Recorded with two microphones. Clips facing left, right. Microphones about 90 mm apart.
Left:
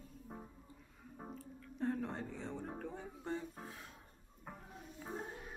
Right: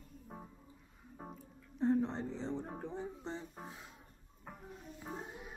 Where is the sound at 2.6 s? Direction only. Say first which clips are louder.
Right 3 dB; 20° right (ahead or behind).